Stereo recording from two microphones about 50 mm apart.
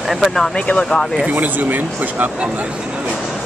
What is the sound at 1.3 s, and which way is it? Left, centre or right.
Speech, right.